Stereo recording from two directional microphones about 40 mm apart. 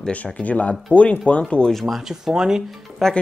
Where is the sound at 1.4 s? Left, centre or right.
Left.